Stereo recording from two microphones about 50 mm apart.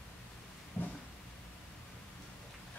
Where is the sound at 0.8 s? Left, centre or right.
Left.